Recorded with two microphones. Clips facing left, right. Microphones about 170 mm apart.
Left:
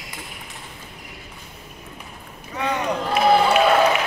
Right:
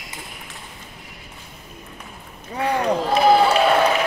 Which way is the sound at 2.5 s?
35° right (ahead or behind).